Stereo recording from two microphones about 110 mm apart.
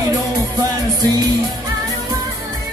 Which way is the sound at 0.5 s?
40° right (ahead or behind).